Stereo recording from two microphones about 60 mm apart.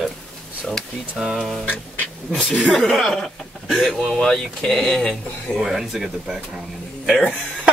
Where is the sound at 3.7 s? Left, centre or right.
Centre.